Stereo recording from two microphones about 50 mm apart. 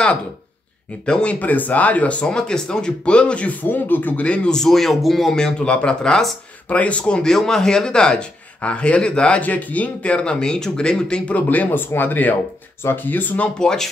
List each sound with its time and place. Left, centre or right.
1.0 s speech: left
2.2 s a man's voice: centre
3.6 s speech: left
4.5 s a man's voice: centre
6.7 s a man's voice: left
11.3 s speech: left
13.6 s a man's voice: centre